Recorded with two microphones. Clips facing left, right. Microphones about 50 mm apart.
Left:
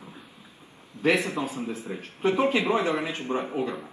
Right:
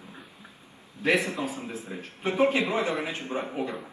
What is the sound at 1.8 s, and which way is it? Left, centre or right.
Speech, left.